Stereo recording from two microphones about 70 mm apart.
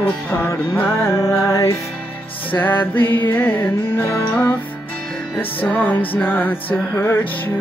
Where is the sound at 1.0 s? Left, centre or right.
Left.